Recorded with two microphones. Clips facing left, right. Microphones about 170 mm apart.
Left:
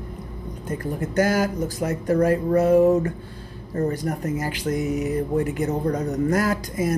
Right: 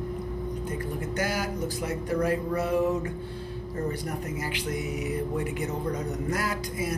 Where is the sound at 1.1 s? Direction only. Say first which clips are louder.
Left 10 dB; 45° left (ahead or behind).